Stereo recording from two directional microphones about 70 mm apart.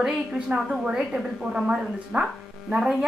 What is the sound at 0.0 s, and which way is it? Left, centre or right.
A woman's voice, centre.